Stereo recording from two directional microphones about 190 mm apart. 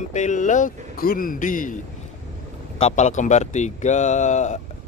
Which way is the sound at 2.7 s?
35° left (ahead or behind).